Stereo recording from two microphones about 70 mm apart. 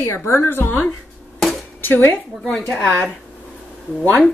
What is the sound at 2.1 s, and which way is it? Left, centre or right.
Speech, centre.